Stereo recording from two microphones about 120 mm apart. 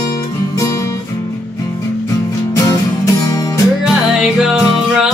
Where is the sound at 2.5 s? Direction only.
25° left (ahead or behind).